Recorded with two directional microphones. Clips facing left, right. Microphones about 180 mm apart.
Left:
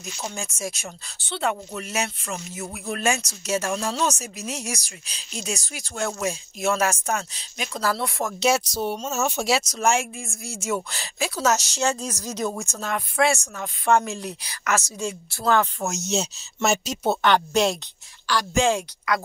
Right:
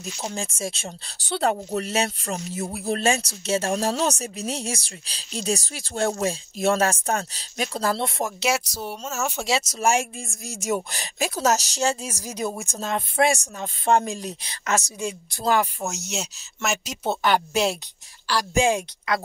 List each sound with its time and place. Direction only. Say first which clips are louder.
0.0 s speech: right 2 dB; 30° right (ahead or behind)
1.2 s speech: right 3 dB; 40° right (ahead or behind)
7.8 s speech: even; 25° right (ahead or behind)
8.4 s speech: left 6 dB; 20° left (ahead or behind)
9.7 s speech: even; 10° right (ahead or behind)
11.1 s speech: right 1 dB; 40° right (ahead or behind)
11.8 s speech: even; 10° right (ahead or behind)
12.7 s speech: right 1 dB; 25° right (ahead or behind)
15.9 s speech: left 5 dB; 20° left (ahead or behind)
17.2 s speech: left 1 dB; 5° right (ahead or behind)
18.2 s a sound: even; 35° right (ahead or behind)
18.5 s speech: right 1 dB; 15° right (ahead or behind)
19.1 s speech: even; 25° right (ahead or behind)